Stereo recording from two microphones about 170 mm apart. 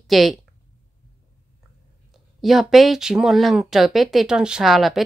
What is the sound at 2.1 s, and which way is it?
Speech, centre (ahead or behind).